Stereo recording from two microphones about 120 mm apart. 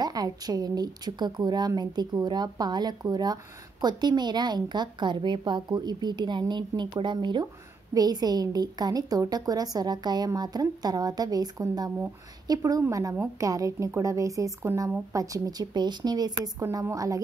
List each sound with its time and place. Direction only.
0.0 s a woman's voice: 30° right (ahead or behind)
15.1 s a woman's voice: 30° right (ahead or behind)